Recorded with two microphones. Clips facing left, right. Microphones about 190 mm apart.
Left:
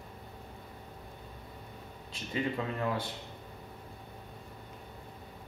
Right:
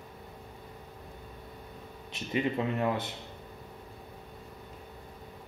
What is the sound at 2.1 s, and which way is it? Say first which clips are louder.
Speech: right 3 dB; 20° right (ahead or behind).